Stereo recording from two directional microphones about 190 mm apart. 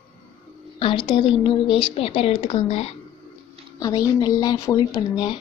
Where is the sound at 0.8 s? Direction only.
25° left (ahead or behind).